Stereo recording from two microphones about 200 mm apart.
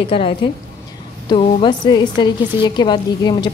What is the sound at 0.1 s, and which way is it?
A woman's voice, 25° left (ahead or behind).